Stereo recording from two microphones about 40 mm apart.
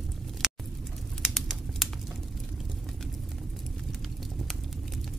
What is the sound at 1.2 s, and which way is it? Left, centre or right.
Bird, centre.